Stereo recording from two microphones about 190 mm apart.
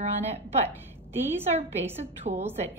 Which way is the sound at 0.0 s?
35° right (ahead or behind).